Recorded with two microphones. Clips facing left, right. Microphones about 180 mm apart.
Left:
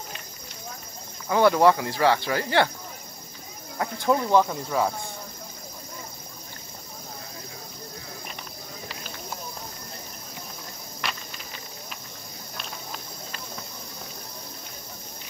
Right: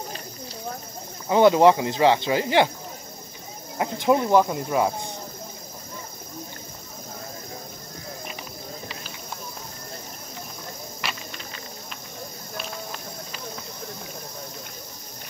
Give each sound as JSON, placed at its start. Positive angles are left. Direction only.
{"t": 1.3, "sound": "cricket", "side_deg": -20}
{"t": 3.7, "sound": "speech", "side_deg": -20}
{"t": 11.0, "sound": "cricket", "side_deg": 0}
{"t": 12.5, "sound": "a sound", "side_deg": 0}